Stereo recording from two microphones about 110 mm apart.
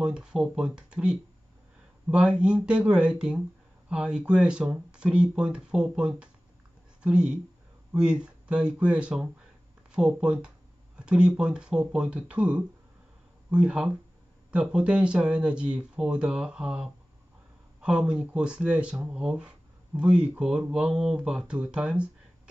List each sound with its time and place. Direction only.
0.0 s speech: 5° right (ahead or behind)